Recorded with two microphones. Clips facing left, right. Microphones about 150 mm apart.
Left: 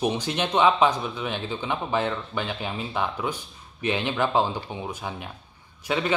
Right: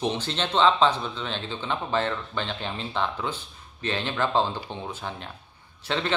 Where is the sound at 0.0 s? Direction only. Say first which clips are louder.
Left 2 dB; 10° left (ahead or behind).